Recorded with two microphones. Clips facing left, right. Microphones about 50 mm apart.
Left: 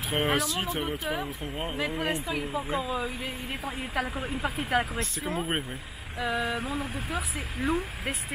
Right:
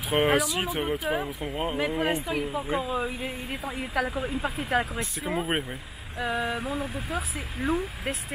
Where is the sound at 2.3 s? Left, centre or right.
Centre.